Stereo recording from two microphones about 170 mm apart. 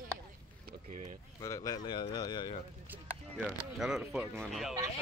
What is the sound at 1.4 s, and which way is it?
Speech, 20° left (ahead or behind).